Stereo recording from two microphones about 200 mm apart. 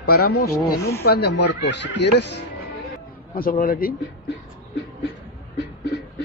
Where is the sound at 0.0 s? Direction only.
50° left (ahead or behind).